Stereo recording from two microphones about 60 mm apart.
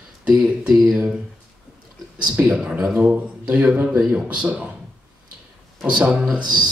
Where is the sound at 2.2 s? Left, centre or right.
Right.